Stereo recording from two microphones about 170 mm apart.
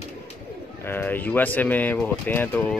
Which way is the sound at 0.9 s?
10° left (ahead or behind).